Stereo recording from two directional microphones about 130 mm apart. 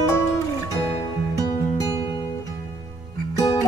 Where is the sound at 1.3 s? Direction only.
30° left (ahead or behind).